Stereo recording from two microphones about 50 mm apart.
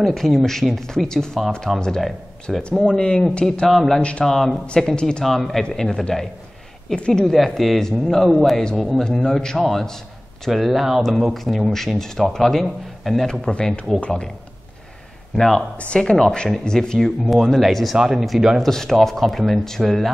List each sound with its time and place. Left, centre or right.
0.0 s speech: centre
1.7 s speech: centre
2.8 s speech: centre
3.6 s speech: centre
5.2 s speech: centre
7.3 s a man's voice: centre
13.3 s speech: centre
15.3 s speech: centre
17.3 s speech: centre
18.6 s speech: centre